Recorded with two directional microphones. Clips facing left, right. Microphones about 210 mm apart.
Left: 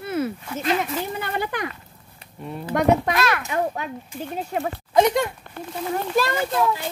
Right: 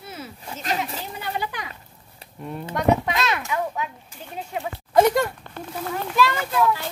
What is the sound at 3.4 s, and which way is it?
Speech, 50° left (ahead or behind).